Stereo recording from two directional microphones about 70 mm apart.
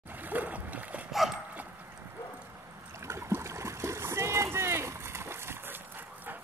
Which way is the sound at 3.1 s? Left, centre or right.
Right.